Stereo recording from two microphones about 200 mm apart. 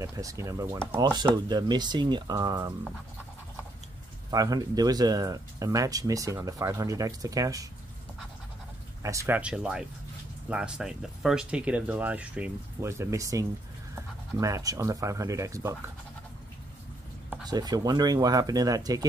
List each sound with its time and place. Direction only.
0.0 s speech: 15° right (ahead or behind)
4.3 s speech: 20° right (ahead or behind)
9.0 s speech: 15° right (ahead or behind)
17.5 s speech: 20° right (ahead or behind)